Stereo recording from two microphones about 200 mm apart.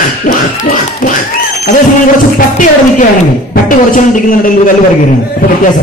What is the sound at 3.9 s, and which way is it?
Quack, 40° left (ahead or behind).